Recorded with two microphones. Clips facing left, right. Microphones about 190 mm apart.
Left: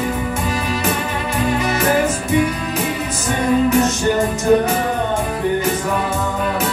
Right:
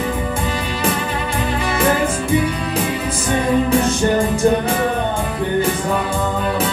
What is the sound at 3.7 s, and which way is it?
Music, 30° right (ahead or behind).